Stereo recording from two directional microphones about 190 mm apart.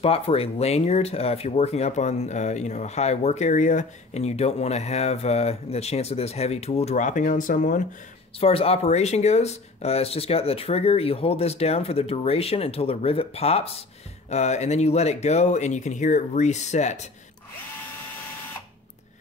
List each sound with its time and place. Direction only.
0.0 s speech: 30° left (ahead or behind)
8.4 s speech: 30° left (ahead or behind)